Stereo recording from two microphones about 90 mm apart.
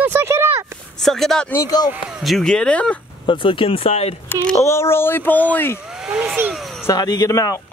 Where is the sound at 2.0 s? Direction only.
10° right (ahead or behind).